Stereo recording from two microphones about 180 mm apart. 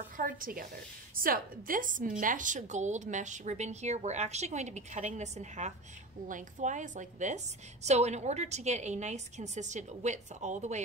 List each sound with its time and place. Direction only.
0.2 s a woman's voice: 50° right (ahead or behind)